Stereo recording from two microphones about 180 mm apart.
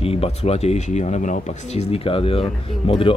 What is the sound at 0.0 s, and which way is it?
Speech, 35° left (ahead or behind).